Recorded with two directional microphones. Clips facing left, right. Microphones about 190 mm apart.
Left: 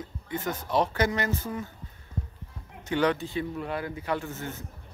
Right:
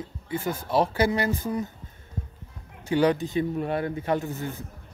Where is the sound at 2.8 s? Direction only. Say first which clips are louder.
Right 4 dB; 10° right (ahead or behind).